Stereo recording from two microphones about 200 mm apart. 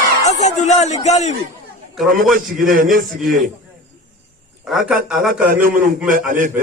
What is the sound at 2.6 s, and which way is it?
Speech, 45° right (ahead or behind).